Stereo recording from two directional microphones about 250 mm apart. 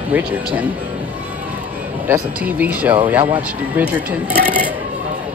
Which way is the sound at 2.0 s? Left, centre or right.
Centre.